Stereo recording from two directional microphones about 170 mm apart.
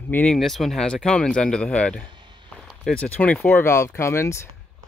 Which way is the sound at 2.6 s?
Centre (ahead or behind).